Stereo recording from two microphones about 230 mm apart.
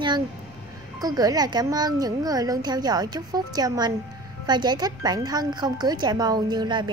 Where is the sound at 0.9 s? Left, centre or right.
Centre.